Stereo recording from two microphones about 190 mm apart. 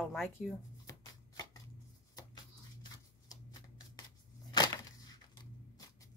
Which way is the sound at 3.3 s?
20° left (ahead or behind).